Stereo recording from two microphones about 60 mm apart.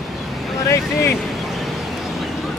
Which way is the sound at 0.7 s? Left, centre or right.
Left.